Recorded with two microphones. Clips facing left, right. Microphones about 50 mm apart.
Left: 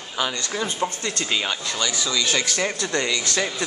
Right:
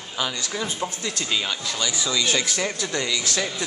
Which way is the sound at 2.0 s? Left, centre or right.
Centre.